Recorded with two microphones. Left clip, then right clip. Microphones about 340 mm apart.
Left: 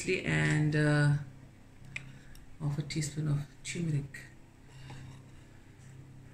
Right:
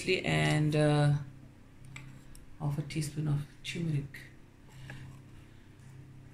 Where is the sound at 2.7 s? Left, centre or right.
Centre.